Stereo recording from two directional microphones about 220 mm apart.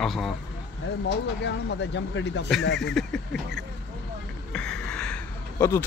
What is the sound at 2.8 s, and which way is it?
Speech, centre (ahead or behind).